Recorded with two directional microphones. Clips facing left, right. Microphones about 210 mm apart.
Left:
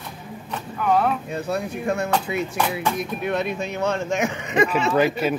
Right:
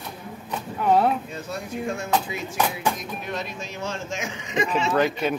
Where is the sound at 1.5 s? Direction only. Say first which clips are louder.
Left 5 dB; 60° left (ahead or behind).